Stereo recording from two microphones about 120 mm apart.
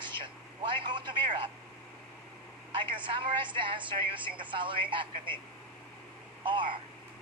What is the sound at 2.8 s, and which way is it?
A woman's voice, 45° right (ahead or behind).